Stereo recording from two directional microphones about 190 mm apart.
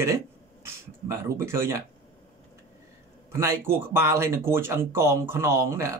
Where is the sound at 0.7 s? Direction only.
15° right (ahead or behind).